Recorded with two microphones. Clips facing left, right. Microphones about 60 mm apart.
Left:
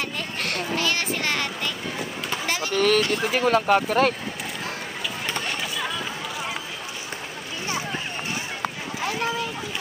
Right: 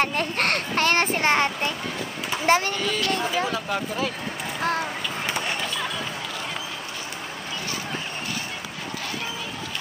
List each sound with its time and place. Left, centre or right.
0.0 s a child's voice: right
2.7 s speech: left